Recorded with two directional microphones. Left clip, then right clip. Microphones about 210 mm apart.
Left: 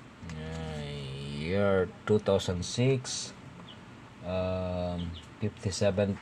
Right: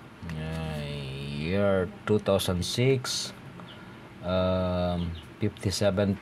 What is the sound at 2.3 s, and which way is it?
Speech, 25° right (ahead or behind).